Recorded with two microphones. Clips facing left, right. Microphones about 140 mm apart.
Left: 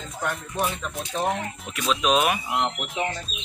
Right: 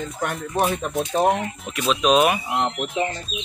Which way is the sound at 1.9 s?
Centre (ahead or behind).